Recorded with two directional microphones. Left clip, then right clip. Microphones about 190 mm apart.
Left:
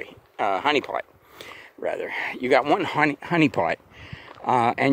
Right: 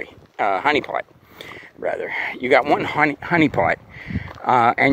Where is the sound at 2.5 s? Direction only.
25° left (ahead or behind).